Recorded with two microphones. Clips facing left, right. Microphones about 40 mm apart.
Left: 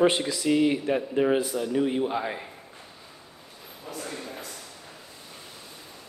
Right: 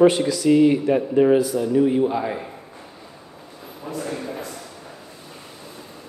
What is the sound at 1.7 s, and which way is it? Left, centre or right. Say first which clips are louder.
Speech: right 7 dB; centre.